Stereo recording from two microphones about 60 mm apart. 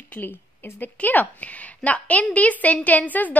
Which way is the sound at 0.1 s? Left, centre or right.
Left.